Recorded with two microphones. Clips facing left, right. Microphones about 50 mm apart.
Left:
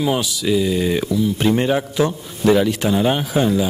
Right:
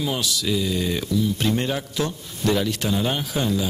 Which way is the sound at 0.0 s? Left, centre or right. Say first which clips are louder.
Left 6 dB; centre.